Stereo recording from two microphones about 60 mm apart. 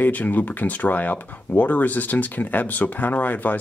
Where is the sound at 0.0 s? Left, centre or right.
Left.